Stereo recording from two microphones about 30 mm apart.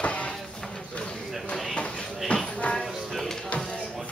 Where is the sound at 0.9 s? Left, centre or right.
Left.